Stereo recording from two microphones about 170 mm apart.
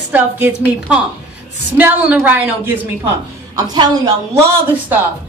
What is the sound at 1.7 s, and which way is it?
Speech, 10° right (ahead or behind).